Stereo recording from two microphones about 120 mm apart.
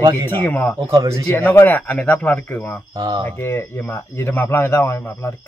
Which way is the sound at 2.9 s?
30° right (ahead or behind).